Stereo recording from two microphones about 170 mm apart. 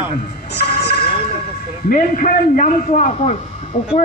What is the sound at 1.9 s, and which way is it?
A man's voice, 50° left (ahead or behind).